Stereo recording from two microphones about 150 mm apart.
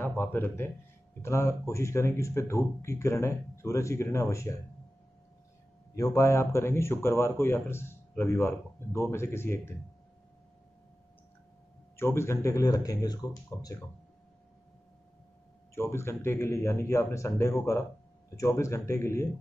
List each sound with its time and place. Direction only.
0.0 s a man's voice: 15° left (ahead or behind)
5.9 s a man's voice: 20° left (ahead or behind)
12.0 s speech: 15° left (ahead or behind)
15.7 s a man's voice: 15° left (ahead or behind)